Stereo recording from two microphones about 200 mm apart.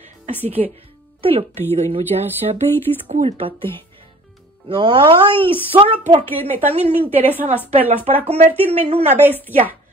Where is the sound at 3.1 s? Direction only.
30° right (ahead or behind).